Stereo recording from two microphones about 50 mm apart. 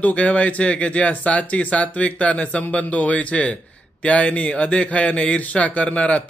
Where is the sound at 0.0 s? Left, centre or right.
Left.